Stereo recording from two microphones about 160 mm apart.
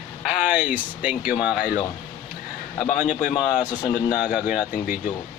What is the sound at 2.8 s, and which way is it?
Speech, 50° left (ahead or behind).